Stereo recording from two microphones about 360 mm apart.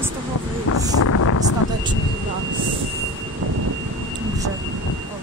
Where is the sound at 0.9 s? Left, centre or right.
Left.